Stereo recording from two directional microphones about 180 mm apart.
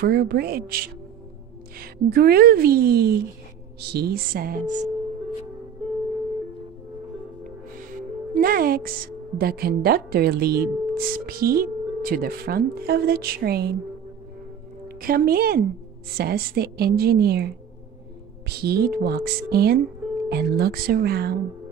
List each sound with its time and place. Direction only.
0.0 s a woman's voice: 60° right (ahead or behind)
8.4 s a woman's voice: 55° right (ahead or behind)
15.0 s a woman's voice: 55° right (ahead or behind)
18.5 s a woman's voice: 60° right (ahead or behind)